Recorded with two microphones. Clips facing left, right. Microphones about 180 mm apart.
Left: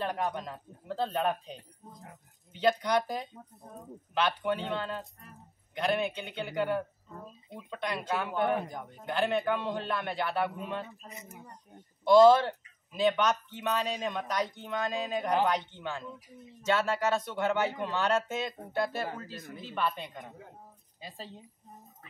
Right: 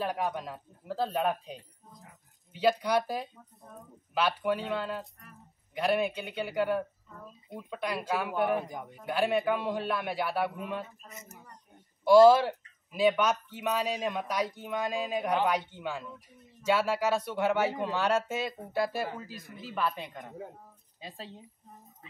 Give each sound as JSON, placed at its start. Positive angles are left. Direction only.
{"t": 0.0, "sound": "speech", "side_deg": -5}
{"t": 11.1, "sound": "speech", "side_deg": -45}
{"t": 12.0, "sound": "speech", "side_deg": -10}